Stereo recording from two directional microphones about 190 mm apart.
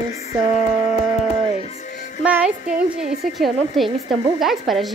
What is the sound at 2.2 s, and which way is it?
A woman's voice, 5° right (ahead or behind).